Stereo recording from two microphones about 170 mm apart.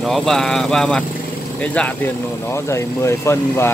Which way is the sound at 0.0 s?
Centre (ahead or behind).